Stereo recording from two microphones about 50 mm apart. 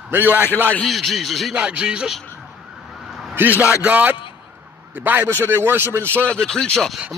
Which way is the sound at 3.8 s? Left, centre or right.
Right.